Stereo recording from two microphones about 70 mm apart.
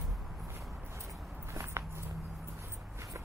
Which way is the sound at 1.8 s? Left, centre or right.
Right.